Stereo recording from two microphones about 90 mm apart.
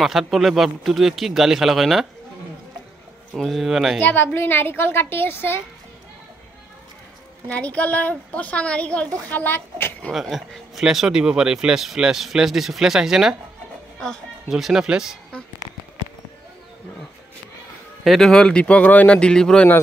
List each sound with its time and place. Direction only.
0.0 s speech: centre (ahead or behind)
3.3 s speech: centre (ahead or behind)
4.0 s a woman's voice: 20° left (ahead or behind)
7.4 s a woman's voice: 15° left (ahead or behind)
10.1 s speech: centre (ahead or behind)
13.9 s speech: 5° left (ahead or behind)
14.5 s speech: 5° right (ahead or behind)
18.0 s speech: centre (ahead or behind)